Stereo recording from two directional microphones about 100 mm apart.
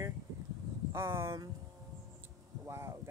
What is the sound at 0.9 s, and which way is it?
Speech, 30° right (ahead or behind).